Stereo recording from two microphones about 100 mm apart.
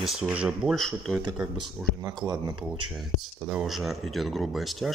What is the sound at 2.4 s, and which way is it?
Speech, 55° right (ahead or behind).